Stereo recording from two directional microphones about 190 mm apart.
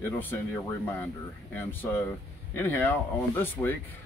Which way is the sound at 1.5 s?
10° left (ahead or behind).